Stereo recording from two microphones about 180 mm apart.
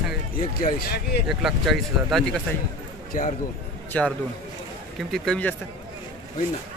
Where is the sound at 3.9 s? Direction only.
10° left (ahead or behind).